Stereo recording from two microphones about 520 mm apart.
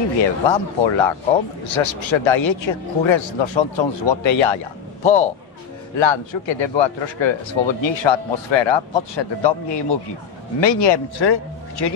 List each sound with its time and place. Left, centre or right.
0.2 s a man's voice: left